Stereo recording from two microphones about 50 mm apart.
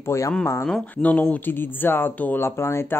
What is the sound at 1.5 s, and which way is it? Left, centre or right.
Speech, left.